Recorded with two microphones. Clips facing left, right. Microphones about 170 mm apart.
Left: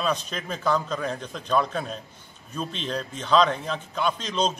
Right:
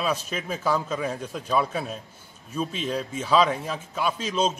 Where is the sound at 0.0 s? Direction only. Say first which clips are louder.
Even; 5° right (ahead or behind).